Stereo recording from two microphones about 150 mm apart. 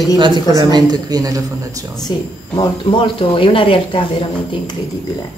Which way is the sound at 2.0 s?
25° left (ahead or behind).